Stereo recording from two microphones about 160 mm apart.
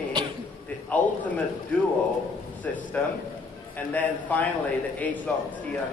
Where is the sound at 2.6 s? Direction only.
10° left (ahead or behind).